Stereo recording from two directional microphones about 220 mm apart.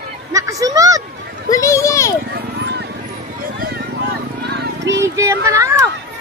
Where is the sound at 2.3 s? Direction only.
50° right (ahead or behind).